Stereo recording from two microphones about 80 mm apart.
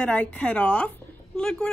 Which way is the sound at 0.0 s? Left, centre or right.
Centre.